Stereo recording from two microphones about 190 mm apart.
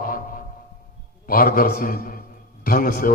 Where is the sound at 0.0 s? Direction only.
50° left (ahead or behind).